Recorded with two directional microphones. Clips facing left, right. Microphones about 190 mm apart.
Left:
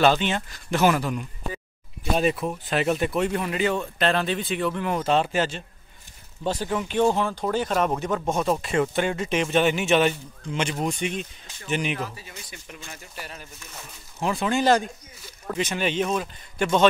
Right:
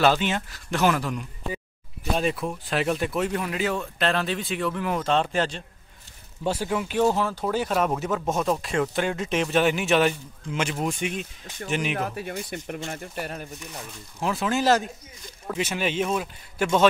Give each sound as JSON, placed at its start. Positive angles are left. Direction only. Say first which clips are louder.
{"t": 0.0, "sound": "speech", "louder": "left 1 dB", "side_deg": -5}
{"t": 6.4, "sound": "speech", "louder": "even", "side_deg": -10}
{"t": 12.0, "sound": "speech", "louder": "right 5 dB", "side_deg": -60}
{"t": 14.2, "sound": "speech", "louder": "left 1 dB", "side_deg": 0}